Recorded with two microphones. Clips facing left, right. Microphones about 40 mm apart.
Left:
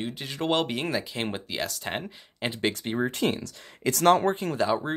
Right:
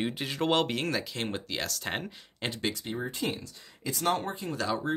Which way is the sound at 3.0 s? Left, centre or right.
Left.